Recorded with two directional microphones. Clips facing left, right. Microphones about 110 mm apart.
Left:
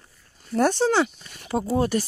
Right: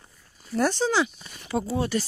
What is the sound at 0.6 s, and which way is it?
Speech, 55° left (ahead or behind).